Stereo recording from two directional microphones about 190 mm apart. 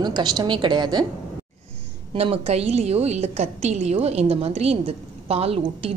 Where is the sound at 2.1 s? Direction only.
30° right (ahead or behind).